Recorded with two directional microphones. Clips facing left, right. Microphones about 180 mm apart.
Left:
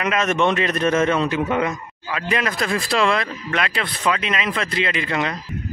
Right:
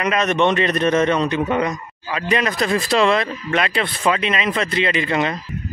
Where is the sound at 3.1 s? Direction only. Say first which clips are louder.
Right 3 dB; 30° right (ahead or behind).